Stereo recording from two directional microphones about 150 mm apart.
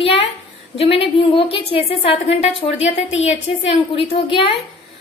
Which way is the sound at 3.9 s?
35° left (ahead or behind).